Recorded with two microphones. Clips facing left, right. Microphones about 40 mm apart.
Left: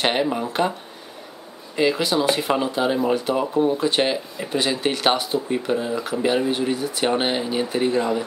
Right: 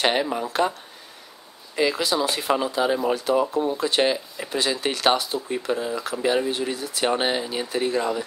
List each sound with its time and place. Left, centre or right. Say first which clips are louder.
0.0 s speech: left 1 dB; centre
1.8 s speech: left 2 dB; left
5.7 s speech: even; left